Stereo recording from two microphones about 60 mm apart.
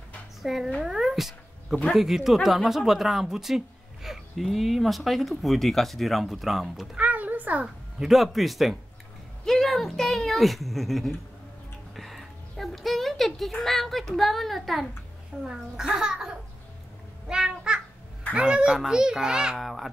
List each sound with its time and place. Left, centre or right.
0.4 s speech: centre
0.8 s cat: centre
1.9 s speech: centre
7.0 s a sound: right
7.6 s speech: centre
11.9 s a sound: centre
15.4 s a child's voice: centre
17.3 s babbling: centre
18.3 s a child's voice: centre
19.6 s speech: centre